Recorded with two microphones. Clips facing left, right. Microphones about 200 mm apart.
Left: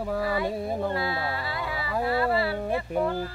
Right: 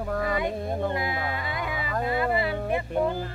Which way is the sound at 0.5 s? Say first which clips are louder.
Even; 5° left (ahead or behind).